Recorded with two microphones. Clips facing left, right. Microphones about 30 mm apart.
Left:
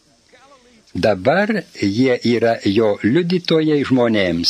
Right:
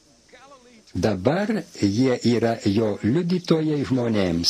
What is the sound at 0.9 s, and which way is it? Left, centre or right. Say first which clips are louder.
Speech: left 6 dB; left.